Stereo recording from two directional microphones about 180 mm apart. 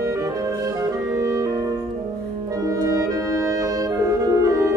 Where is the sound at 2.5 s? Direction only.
20° right (ahead or behind).